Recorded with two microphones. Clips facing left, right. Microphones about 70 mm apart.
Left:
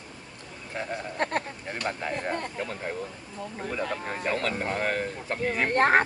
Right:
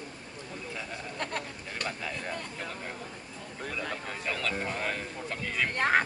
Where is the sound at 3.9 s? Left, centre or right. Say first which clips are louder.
Left 6 dB; left.